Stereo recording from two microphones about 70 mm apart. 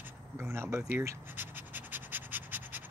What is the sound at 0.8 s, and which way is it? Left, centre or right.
Scratch, right.